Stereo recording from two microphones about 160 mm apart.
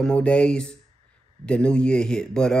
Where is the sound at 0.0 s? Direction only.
5° left (ahead or behind).